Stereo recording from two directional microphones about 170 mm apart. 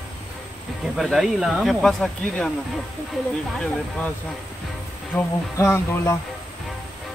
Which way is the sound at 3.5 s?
5° left (ahead or behind).